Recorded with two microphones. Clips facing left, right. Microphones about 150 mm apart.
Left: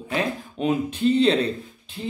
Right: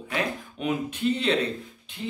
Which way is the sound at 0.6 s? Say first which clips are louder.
Left 5 dB; 35° left (ahead or behind).